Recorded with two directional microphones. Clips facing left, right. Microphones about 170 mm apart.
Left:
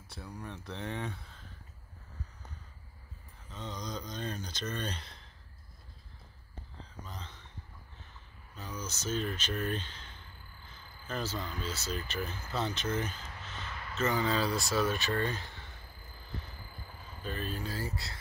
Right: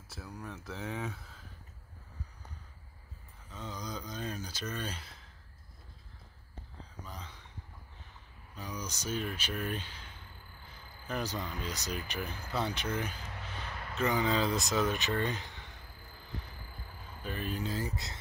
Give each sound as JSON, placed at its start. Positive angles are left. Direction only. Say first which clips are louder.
{"t": 0.1, "sound": "speech", "louder": "even", "side_deg": -5}
{"t": 3.4, "sound": "speech", "louder": "left 1 dB", "side_deg": -5}
{"t": 7.1, "sound": "speech", "louder": "right 1 dB", "side_deg": -10}
{"t": 8.5, "sound": "speech", "louder": "even", "side_deg": -15}
{"t": 17.2, "sound": "speech", "louder": "right 1 dB", "side_deg": -15}